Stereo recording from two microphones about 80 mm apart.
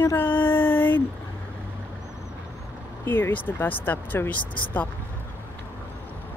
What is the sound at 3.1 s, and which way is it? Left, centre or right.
Speech, left.